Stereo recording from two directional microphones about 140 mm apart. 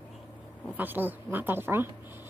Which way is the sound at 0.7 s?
15° right (ahead or behind).